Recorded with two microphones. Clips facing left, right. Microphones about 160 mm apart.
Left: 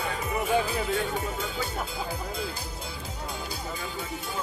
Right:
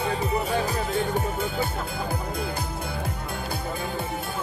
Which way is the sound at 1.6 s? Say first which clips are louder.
Right 4 dB; 55° right (ahead or behind).